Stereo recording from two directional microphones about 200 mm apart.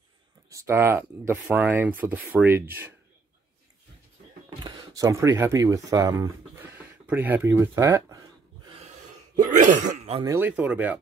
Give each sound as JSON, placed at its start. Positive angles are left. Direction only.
{"t": 0.5, "sound": "speech", "side_deg": -15}
{"t": 4.5, "sound": "speech", "side_deg": -20}
{"t": 9.3, "sound": "throat clearing", "side_deg": -40}
{"t": 10.2, "sound": "speech", "side_deg": -10}